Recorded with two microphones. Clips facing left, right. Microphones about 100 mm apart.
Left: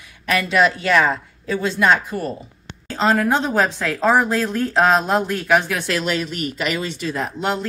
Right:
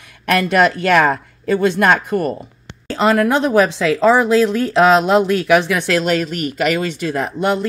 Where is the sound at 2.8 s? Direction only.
75° right (ahead or behind).